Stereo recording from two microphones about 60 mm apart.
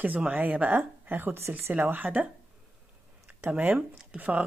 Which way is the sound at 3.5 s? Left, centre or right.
Right.